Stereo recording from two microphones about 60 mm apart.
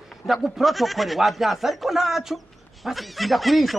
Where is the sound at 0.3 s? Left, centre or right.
Centre.